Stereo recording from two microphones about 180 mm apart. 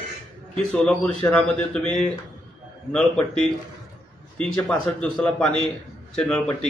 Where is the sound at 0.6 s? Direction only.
5° left (ahead or behind).